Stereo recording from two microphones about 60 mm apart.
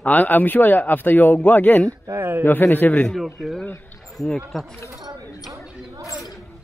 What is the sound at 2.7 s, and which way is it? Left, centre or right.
Speech, left.